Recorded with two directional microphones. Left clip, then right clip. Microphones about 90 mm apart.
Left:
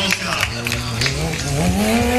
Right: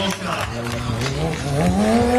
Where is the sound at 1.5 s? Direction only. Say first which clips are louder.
Right 1 dB; 10° right (ahead or behind).